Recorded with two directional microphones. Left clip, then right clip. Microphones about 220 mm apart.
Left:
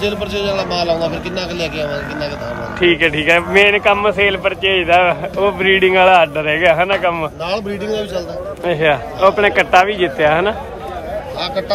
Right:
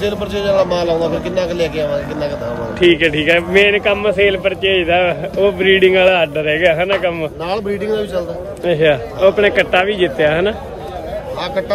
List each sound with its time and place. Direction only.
0.0 s speech: 10° right (ahead or behind)
7.4 s speech: 15° right (ahead or behind)